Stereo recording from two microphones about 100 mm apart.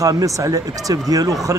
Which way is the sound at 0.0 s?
35° right (ahead or behind).